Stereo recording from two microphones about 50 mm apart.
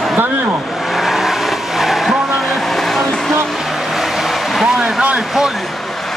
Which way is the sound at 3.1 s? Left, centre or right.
Centre.